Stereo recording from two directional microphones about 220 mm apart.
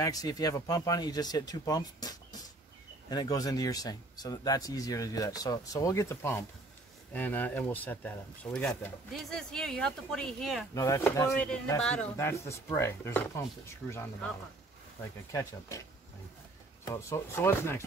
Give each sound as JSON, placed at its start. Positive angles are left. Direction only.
{"t": 0.0, "sound": "speech", "side_deg": 15}
{"t": 10.7, "sound": "speech", "side_deg": 15}
{"t": 16.8, "sound": "speech", "side_deg": 10}